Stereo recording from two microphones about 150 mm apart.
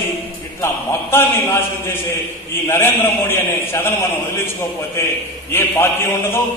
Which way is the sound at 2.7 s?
15° left (ahead or behind).